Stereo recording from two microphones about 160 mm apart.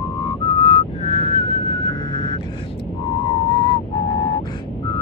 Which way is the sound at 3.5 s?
25° left (ahead or behind).